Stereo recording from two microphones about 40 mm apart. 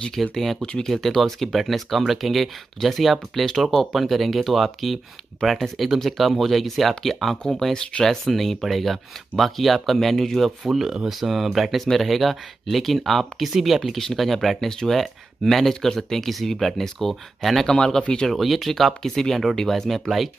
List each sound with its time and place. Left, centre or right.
0.1 s speech: centre
0.6 s speech: left
0.8 s speech: centre
14.7 s speech: centre
17.6 s speech: centre
18.3 s speech: centre